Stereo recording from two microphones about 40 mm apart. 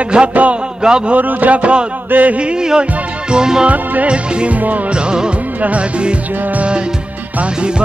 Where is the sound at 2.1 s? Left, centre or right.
Right.